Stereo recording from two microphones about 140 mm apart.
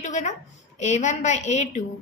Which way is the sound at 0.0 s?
60° left (ahead or behind).